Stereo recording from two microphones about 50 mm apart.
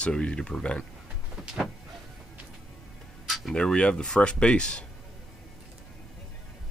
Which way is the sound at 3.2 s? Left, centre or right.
Centre.